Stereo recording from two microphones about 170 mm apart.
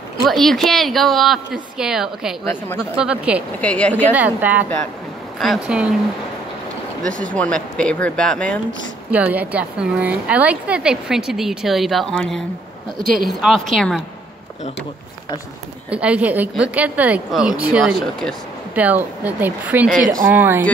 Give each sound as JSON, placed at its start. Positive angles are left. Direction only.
{"t": 0.2, "sound": "a woman's voice", "side_deg": 0}
{"t": 2.4, "sound": "speech", "side_deg": 10}
{"t": 3.0, "sound": "a woman's voice", "side_deg": -5}
{"t": 3.6, "sound": "speech", "side_deg": 10}
{"t": 4.1, "sound": "a woman's voice", "side_deg": -10}
{"t": 7.1, "sound": "speech", "side_deg": -50}
{"t": 7.3, "sound": "a woman's voice", "side_deg": 5}
{"t": 9.1, "sound": "a woman's voice", "side_deg": -10}
{"t": 15.9, "sound": "a woman's voice", "side_deg": -5}